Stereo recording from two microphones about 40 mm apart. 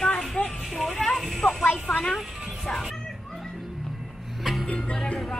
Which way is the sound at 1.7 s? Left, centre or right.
Left.